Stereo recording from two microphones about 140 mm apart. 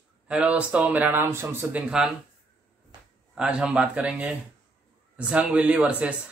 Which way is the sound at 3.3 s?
5° right (ahead or behind).